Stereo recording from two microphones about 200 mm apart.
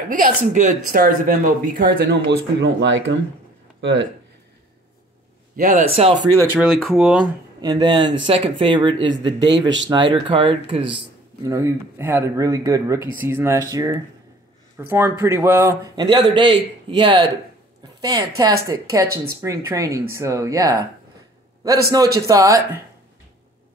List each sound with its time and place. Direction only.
0.1 s speech: 40° right (ahead or behind); by 4.1 s 65° right (ahead or behind)
5.6 s speech: 40° right (ahead or behind); by 6.4 s 20° right (ahead or behind)
6.5 s speech: centre (ahead or behind)
7.6 s speech: 20° right (ahead or behind)
18.4 s speech: 15° right (ahead or behind)
22.2 s speech: 15° right (ahead or behind)